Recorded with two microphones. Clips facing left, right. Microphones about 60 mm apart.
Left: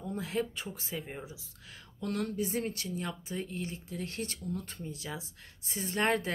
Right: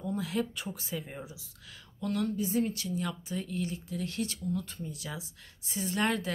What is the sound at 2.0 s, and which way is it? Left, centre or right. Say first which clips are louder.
Speech: right 2 dB; left.